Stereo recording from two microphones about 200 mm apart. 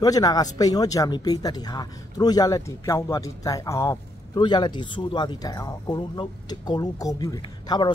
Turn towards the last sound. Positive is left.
turn(degrees=20)  # may be behind; listen again after turning